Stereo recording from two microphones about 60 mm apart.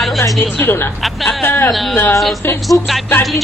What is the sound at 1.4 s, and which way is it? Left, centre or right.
Speech, left.